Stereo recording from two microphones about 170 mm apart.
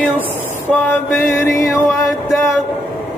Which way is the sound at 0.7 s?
10° left (ahead or behind).